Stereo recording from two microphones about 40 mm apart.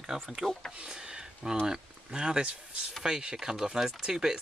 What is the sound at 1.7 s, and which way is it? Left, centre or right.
Speech, right.